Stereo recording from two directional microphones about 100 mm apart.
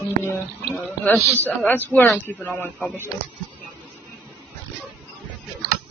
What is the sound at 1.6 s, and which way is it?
Speech, 20° left (ahead or behind).